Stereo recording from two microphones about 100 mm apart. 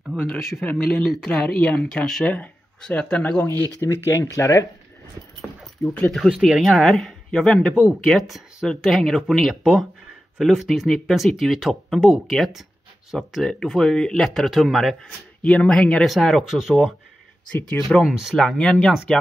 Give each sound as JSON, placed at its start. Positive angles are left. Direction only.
{"t": 0.1, "sound": "speech", "side_deg": 0}
{"t": 0.7, "sound": "speech", "side_deg": 15}
{"t": 5.8, "sound": "speech", "side_deg": 15}
{"t": 6.1, "sound": "speech", "side_deg": 0}
{"t": 17.5, "sound": "speech", "side_deg": 15}
{"t": 17.8, "sound": "speech", "side_deg": 0}